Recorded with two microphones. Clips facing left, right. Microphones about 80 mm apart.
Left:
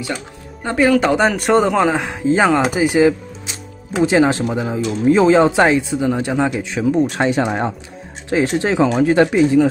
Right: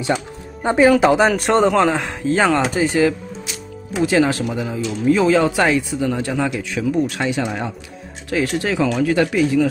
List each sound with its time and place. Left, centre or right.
0.0 s speech: right
1.0 s a man's voice: centre; by 7.7 s left
8.3 s speech: left